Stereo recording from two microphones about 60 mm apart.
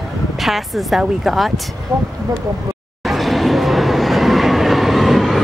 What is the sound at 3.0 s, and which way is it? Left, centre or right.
Vehicle, centre.